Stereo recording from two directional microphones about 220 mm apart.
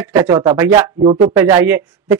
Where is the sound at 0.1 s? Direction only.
15° right (ahead or behind).